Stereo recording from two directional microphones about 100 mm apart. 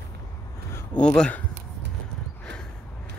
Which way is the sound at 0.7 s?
15° left (ahead or behind).